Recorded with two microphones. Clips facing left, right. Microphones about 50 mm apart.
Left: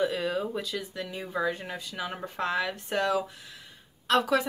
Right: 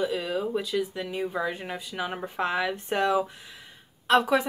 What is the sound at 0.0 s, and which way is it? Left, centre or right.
Speech, centre.